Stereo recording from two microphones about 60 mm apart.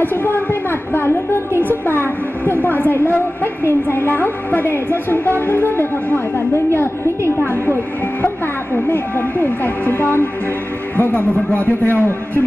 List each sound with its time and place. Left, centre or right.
0.0 s a woman's voice: left
6.5 s a woman's voice: left
8.7 s a woman's voice: left